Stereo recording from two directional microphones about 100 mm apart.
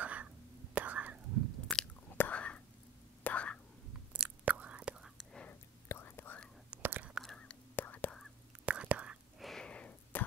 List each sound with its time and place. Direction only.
0.0 s whispering: 15° right (ahead or behind)
1.7 s chewing: 5° left (ahead or behind)
2.0 s whispering: 20° left (ahead or behind)
4.1 s chewing: 15° right (ahead or behind)
5.1 s whispering: 5° left (ahead or behind)
5.5 s whispering: 20° left (ahead or behind)
6.7 s whispering: 15° right (ahead or behind)
7.2 s whispering: 10° left (ahead or behind)
8.6 s whispering: 10° right (ahead or behind)
9.4 s a sound: 5° left (ahead or behind)